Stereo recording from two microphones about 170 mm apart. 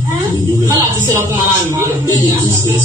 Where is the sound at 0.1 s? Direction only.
20° right (ahead or behind).